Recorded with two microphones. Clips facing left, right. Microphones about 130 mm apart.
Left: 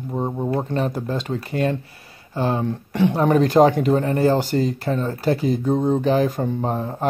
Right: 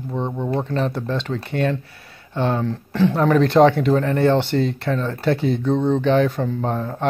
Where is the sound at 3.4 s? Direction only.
40° left (ahead or behind).